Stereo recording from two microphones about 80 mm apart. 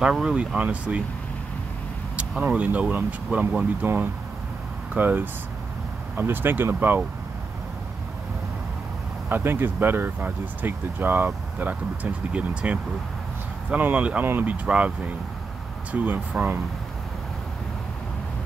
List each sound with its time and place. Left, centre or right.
0.0 s speech: centre
2.4 s speech: centre
9.3 s speech: right